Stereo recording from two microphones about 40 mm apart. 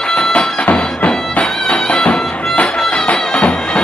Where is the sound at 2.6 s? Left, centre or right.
Left.